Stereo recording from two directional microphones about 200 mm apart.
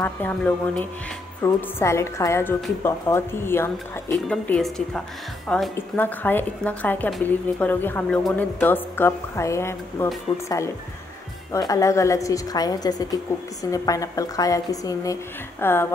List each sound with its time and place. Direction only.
0.0 s a woman's voice: 10° left (ahead or behind)